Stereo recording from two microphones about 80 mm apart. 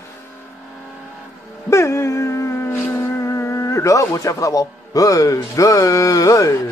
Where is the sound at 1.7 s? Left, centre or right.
Left.